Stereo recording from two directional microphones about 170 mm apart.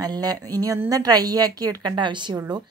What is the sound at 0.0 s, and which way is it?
Speech, 25° right (ahead or behind).